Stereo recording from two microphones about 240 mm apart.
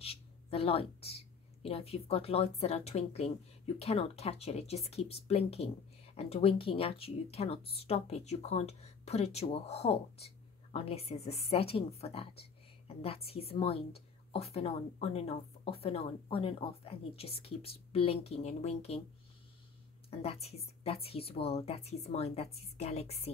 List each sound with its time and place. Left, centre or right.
0.0 s speech: left
20.1 s speech: left